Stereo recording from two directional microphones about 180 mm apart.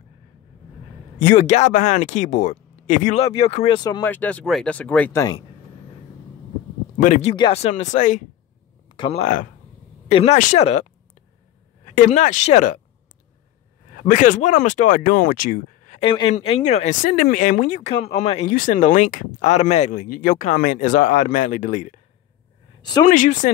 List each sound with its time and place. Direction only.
1.2 s speech: 40° left (ahead or behind); by 4.0 s 25° left (ahead or behind)
4.0 s speech: 10° left (ahead or behind)
7.0 s speech: 40° left (ahead or behind)
7.3 s speech: 25° left (ahead or behind)
7.6 s speech: 40° left (ahead or behind)
8.8 s a sound: 25° left (ahead or behind)
9.2 s speech: 45° left (ahead or behind)
14.0 s speech: 45° left (ahead or behind)
16.0 s speech: 30° left (ahead or behind)
22.8 s speech: 25° left (ahead or behind)
23.0 s speech: 45° left (ahead or behind)